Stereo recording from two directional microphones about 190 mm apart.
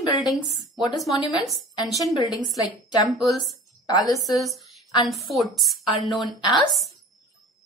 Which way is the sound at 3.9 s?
20° left (ahead or behind).